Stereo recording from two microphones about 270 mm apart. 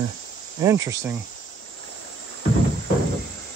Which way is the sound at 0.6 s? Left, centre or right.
Centre.